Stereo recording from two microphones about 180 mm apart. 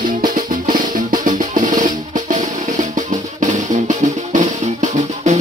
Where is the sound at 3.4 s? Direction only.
40° right (ahead or behind).